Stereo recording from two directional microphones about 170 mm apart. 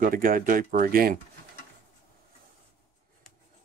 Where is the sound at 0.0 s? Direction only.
55° right (ahead or behind).